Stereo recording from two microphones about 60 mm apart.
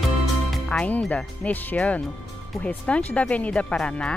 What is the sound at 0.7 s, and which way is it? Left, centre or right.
Speech, centre.